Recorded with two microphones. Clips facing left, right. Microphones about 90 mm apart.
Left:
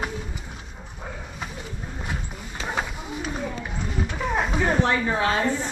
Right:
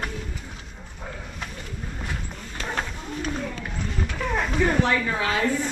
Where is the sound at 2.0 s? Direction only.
10° left (ahead or behind).